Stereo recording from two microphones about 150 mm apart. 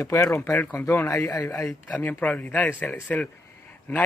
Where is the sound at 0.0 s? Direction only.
20° left (ahead or behind).